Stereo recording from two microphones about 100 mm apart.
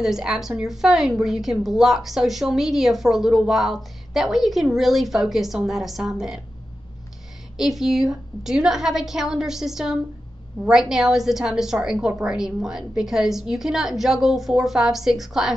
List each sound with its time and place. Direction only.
0.0 s a woman's voice: 5° right (ahead or behind)
7.5 s a woman's voice: 5° right (ahead or behind)